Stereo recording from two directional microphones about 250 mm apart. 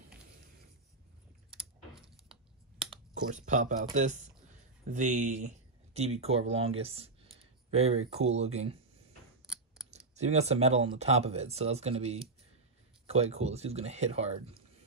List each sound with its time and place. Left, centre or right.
1.5 s typing: centre
3.3 s speech: right
9.8 s speech: right